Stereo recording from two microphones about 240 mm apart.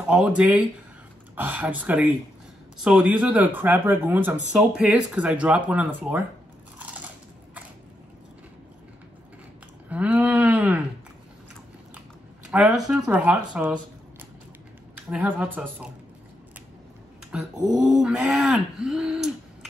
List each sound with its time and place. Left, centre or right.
0.0 s speech: centre
9.8 s a sound: centre
12.4 s speech: centre
15.0 s speech: centre
17.6 s speech: centre
17.8 s speech: centre